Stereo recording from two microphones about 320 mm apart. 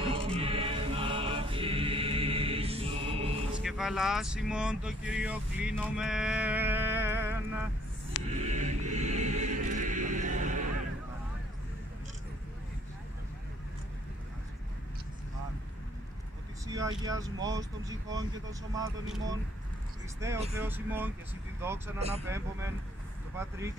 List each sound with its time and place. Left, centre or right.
0.1 s music: centre
3.5 s speech: centre
8.2 s music: left
8.5 s choir: right
16.6 s speech: centre
20.3 s speech: centre
20.6 s speech: centre